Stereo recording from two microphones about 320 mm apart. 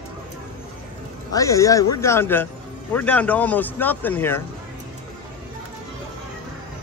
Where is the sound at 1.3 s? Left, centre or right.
Centre.